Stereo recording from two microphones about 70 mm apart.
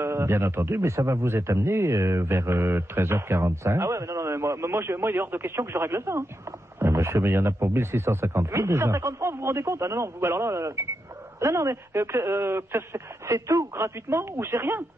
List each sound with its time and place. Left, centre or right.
0.0 s a man's voice: right